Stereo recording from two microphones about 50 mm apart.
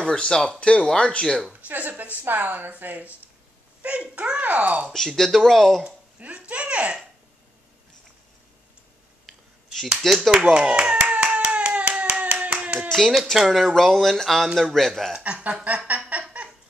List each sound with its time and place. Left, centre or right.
0.0 s speech: centre
1.5 s speech: right
3.8 s a child's voice: right
4.9 s speech: centre
5.9 s a child's voice: right
9.2 s a sound: centre
10.0 s speech: centre
10.5 s a child's voice: centre
11.1 s hands: right
13.5 s speech: centre
15.2 s a child's voice: right
16.1 s a sound: right